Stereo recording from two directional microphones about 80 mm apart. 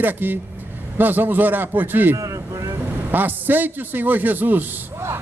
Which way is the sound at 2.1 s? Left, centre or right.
Right.